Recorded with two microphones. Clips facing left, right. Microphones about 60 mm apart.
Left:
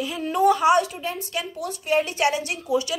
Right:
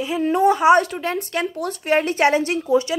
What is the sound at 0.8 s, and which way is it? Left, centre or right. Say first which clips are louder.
A woman's voice: right 4 dB; right.